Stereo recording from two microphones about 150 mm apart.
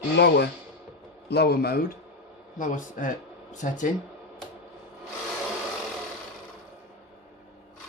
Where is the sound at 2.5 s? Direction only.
60° left (ahead or behind).